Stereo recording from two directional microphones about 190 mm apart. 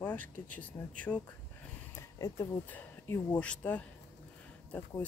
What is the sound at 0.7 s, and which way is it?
Speech, 20° left (ahead or behind).